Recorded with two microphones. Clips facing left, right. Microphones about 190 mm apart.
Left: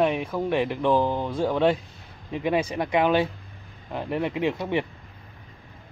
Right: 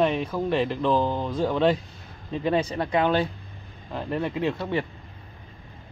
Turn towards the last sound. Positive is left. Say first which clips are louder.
# left 1 dB
turn(degrees=15)  # may be behind; listen again after turning